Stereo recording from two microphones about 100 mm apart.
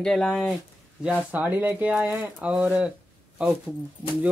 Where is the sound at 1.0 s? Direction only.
15° right (ahead or behind).